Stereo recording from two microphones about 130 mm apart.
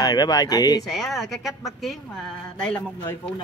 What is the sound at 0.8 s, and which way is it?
A woman's voice, centre (ahead or behind).